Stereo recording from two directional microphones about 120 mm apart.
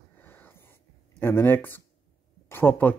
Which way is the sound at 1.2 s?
20° left (ahead or behind).